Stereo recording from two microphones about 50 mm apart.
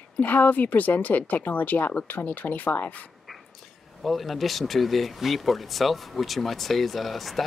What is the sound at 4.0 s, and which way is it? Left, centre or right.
Speech, centre.